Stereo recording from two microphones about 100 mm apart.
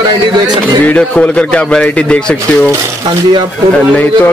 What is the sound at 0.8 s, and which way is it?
A man's voice, 15° left (ahead or behind).